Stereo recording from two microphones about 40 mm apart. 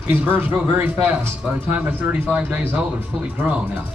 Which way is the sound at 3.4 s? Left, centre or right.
Right.